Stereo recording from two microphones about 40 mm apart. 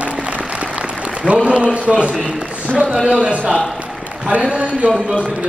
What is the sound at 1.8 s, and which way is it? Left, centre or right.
A man's voice, right.